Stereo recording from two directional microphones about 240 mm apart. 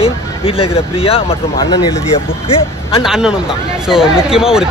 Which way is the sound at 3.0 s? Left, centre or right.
Centre.